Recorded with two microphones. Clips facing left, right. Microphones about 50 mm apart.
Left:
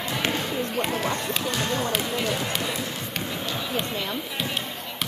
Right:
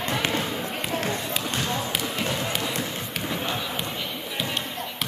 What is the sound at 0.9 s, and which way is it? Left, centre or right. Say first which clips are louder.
Run: left 1 dB; left.